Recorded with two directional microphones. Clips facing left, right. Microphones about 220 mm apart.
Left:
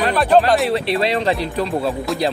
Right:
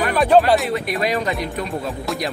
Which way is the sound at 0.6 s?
30° left (ahead or behind).